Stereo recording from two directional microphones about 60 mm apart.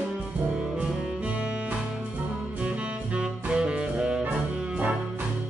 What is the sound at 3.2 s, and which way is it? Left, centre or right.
Music, centre.